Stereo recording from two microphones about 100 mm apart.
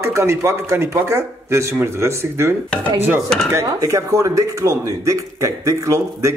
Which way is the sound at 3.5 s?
35° right (ahead or behind).